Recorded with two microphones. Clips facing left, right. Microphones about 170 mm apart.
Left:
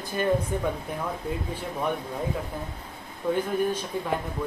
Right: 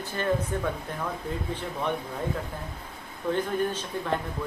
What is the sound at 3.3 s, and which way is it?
Speech, 10° left (ahead or behind).